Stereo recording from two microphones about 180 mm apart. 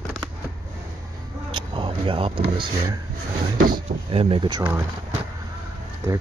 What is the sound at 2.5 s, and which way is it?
Speech, 25° right (ahead or behind).